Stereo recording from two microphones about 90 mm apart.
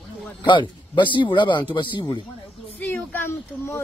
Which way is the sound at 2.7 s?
20° left (ahead or behind).